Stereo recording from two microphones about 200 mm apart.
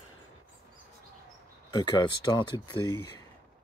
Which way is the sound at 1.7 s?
20° left (ahead or behind).